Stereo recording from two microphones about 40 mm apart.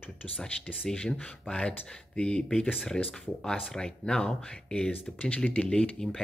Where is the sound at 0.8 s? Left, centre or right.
Left.